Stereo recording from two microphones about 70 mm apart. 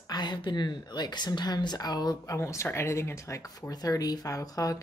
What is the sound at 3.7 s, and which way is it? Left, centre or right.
Speech, left.